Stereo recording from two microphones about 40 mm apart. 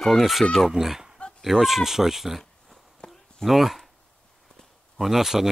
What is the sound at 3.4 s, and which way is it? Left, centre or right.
Speech, centre.